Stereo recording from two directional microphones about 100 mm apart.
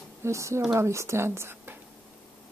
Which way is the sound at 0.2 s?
30° right (ahead or behind).